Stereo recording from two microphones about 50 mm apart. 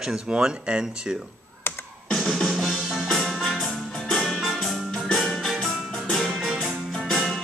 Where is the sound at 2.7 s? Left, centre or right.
Centre.